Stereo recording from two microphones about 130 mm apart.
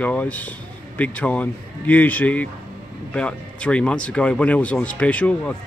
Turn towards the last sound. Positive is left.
turn(degrees=10)  # may be behind; listen again after turning